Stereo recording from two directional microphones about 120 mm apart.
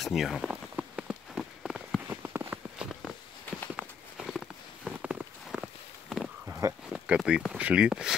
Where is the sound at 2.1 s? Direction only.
20° right (ahead or behind).